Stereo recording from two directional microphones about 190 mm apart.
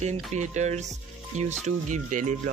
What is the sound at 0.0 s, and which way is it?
Speech, 35° right (ahead or behind).